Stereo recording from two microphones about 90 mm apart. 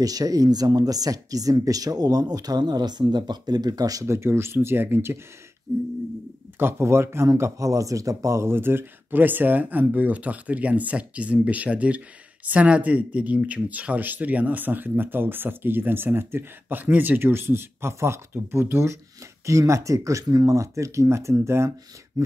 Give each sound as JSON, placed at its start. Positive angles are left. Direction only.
{"t": 0.0, "sound": "speech", "side_deg": -45}
{"t": 4.1, "sound": "speech", "side_deg": -30}
{"t": 6.6, "sound": "speech", "side_deg": -30}
{"t": 22.2, "sound": "a sound", "side_deg": -45}